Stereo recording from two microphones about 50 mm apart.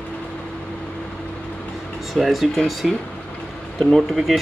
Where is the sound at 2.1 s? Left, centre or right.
Centre.